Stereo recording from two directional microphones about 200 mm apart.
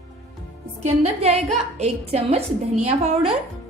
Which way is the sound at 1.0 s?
30° right (ahead or behind).